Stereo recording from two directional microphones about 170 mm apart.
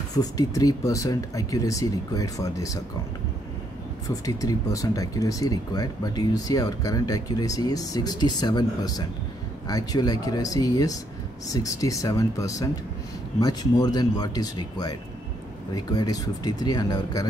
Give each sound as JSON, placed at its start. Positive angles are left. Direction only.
{"t": 0.1, "sound": "speech", "side_deg": 20}
{"t": 4.1, "sound": "speech", "side_deg": 20}